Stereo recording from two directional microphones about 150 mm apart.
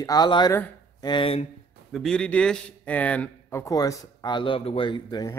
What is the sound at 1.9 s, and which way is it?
A man's voice, 5° left (ahead or behind).